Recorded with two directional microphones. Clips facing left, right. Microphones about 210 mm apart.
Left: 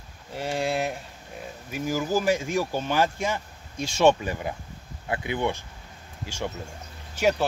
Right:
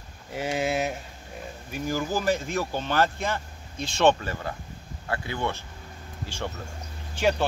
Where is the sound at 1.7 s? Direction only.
10° left (ahead or behind).